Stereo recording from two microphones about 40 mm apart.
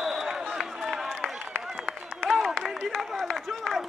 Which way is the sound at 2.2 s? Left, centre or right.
Centre.